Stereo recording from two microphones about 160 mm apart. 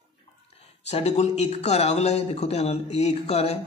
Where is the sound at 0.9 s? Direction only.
45° left (ahead or behind).